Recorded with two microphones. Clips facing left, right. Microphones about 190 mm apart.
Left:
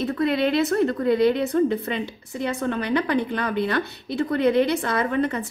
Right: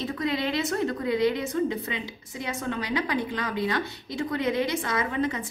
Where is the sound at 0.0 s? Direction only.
60° left (ahead or behind).